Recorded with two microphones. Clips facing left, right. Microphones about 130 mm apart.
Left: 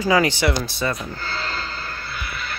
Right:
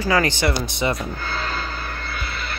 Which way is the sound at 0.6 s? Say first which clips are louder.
Right 2 dB; 20° right (ahead or behind).